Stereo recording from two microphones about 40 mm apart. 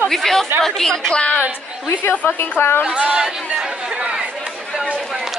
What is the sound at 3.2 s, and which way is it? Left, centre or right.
Chatter, centre.